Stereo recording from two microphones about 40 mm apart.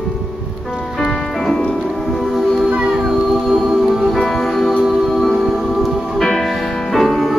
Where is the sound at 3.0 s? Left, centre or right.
Centre.